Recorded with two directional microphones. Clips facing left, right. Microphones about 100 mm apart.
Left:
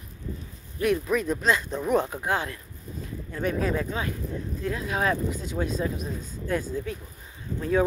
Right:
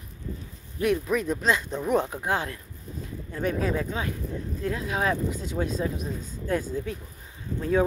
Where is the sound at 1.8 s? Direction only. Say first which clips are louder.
Even; 10° left (ahead or behind).